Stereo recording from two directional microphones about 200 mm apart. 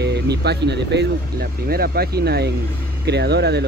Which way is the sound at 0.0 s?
55° right (ahead or behind).